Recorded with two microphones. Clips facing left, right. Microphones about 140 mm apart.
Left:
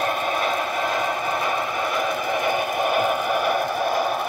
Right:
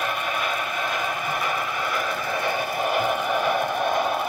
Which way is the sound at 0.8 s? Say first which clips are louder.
Left 4 dB; 25° left (ahead or behind).